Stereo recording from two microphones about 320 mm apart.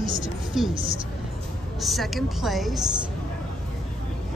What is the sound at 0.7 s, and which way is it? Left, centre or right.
Speech, centre.